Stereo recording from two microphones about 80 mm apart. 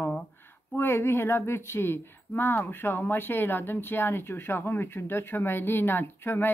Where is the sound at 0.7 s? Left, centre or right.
Left.